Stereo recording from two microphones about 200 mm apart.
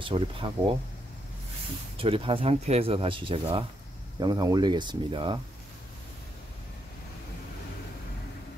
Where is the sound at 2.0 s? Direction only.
25° right (ahead or behind).